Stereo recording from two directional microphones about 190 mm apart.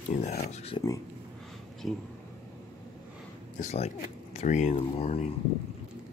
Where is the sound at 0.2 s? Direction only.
35° left (ahead or behind).